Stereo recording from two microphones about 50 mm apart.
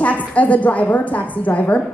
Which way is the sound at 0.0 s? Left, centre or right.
Left.